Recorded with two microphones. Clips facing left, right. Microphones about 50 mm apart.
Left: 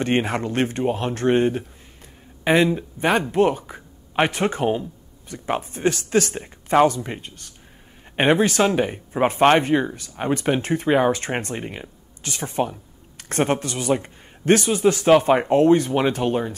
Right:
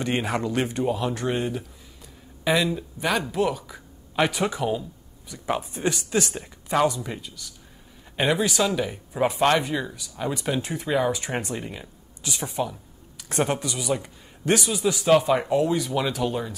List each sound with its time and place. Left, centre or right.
0.0 s speech: left
6.3 s speech: left